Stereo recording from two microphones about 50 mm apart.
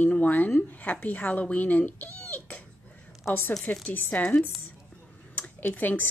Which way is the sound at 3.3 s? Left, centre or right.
Left.